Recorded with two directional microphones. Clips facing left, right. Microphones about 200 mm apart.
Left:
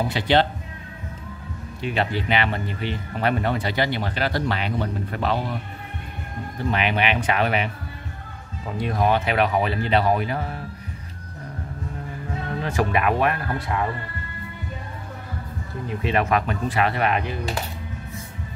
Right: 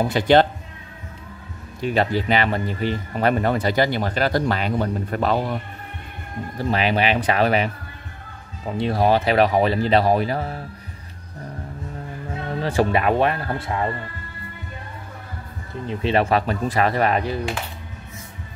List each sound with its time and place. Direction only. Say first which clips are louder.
0.1 s speech: right 5 dB; 45° right (ahead or behind)
1.8 s speech: right 4 dB; 40° right (ahead or behind)
6.6 s speech: right 3 dB; 35° right (ahead or behind)
8.7 s speech: right 3 dB; 30° right (ahead or behind)
12.6 s speech: right 3 dB; 30° right (ahead or behind)
15.9 s speech: right 3 dB; 30° right (ahead or behind)